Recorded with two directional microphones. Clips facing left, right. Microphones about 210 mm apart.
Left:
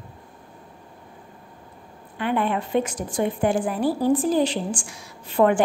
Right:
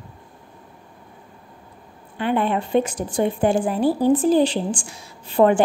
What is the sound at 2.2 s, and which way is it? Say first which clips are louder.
A woman's voice: right 2 dB; 30° right (ahead or behind).